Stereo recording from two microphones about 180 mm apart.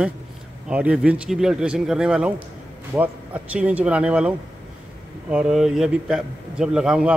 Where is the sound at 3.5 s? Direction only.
5° right (ahead or behind).